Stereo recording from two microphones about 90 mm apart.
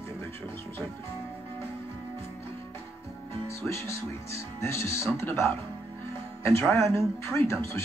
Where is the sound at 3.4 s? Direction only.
30° left (ahead or behind).